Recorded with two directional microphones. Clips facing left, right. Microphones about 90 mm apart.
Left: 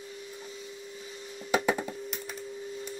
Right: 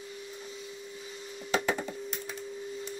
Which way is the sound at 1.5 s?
10° left (ahead or behind).